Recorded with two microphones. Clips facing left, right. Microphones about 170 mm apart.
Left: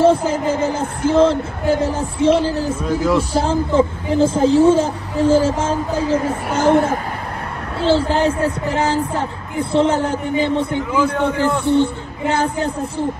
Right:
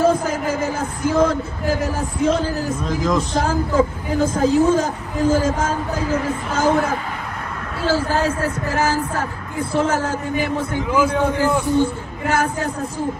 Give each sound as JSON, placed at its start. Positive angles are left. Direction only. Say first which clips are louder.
{"t": 0.0, "sound": "speech", "louder": "left 3 dB", "side_deg": 30}
{"t": 2.9, "sound": "speech", "louder": "left 3 dB", "side_deg": 5}
{"t": 3.3, "sound": "speech", "louder": "left 2 dB", "side_deg": 25}
{"t": 6.5, "sound": "speech", "louder": "left 4 dB", "side_deg": 65}
{"t": 7.8, "sound": "speech", "louder": "left 4 dB", "side_deg": 25}
{"t": 11.0, "sound": "a man's voice", "louder": "even", "side_deg": -5}
{"t": 11.8, "sound": "speech", "louder": "left 2 dB", "side_deg": 20}